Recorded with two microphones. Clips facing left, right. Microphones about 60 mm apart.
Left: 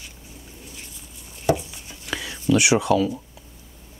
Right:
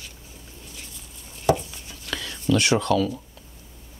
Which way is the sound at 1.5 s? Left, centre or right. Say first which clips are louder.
Even; centre.